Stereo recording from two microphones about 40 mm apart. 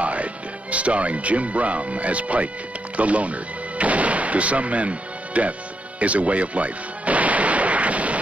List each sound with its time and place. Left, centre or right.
0.0 s speech: right
5.9 s artillery fire: right